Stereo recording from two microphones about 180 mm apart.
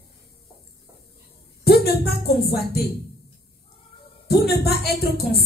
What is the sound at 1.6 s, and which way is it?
Speech, 60° left (ahead or behind).